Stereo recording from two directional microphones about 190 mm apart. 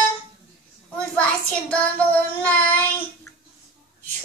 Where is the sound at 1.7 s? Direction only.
10° left (ahead or behind).